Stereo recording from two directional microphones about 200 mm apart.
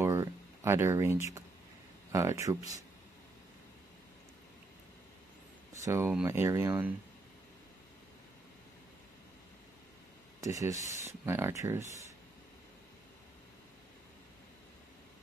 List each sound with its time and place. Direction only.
0.0 s a sound: 15° right (ahead or behind)
2.1 s speech: 15° right (ahead or behind)
5.9 s speech: 10° right (ahead or behind)
10.4 s speech: 15° right (ahead or behind)